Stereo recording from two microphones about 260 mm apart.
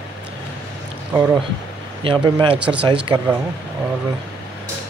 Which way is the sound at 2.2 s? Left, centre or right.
Centre.